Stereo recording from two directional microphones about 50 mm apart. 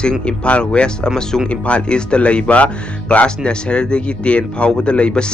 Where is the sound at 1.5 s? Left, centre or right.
Left.